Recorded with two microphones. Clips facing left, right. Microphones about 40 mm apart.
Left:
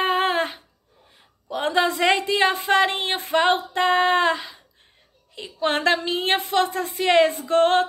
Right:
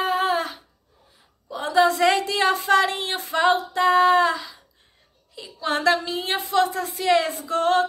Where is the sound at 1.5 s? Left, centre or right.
Left.